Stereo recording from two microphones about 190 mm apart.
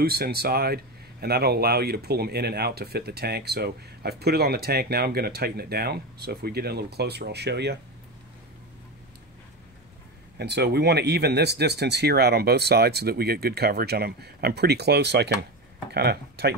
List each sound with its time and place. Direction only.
0.0 s speech: 55° right (ahead or behind)
10.3 s speech: 60° right (ahead or behind)